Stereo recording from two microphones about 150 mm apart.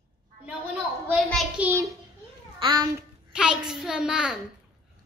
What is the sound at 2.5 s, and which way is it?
Speech, 30° right (ahead or behind).